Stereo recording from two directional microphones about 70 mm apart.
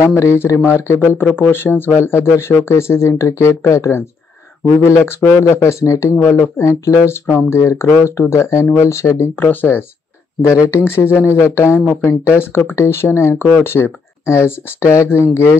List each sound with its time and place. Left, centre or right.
0.0 s speech: left
9.2 s speech: left